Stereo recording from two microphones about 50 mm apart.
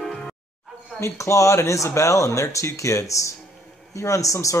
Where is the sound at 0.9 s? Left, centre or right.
Left.